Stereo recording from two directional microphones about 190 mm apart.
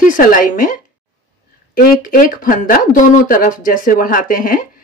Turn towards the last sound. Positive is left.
turn(degrees=45)  # may be behind; listen again after turning